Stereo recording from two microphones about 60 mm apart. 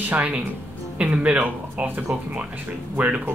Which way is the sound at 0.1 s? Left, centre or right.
Right.